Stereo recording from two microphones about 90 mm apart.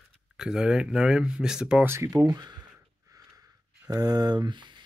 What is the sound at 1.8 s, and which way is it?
Speech, 30° right (ahead or behind).